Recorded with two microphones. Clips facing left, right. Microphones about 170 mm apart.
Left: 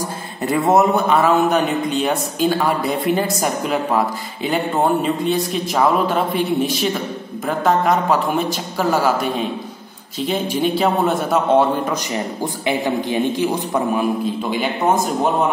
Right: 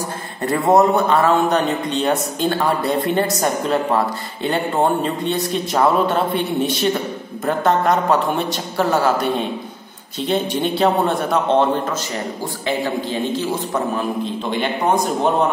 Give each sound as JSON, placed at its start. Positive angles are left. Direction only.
{"t": 0.4, "sound": "a man's voice", "side_deg": 0}
{"t": 12.6, "sound": "a man's voice", "side_deg": 15}